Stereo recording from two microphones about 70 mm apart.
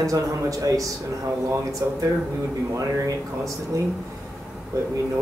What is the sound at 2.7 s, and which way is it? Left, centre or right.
Speech, right.